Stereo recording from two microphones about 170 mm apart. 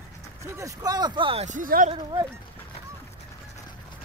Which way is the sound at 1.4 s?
50° right (ahead or behind).